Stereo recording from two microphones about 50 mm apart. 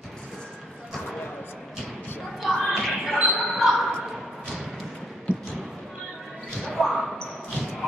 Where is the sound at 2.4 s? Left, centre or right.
Centre.